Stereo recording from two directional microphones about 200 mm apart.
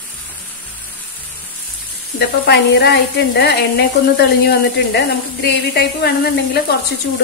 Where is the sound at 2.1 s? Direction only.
55° left (ahead or behind).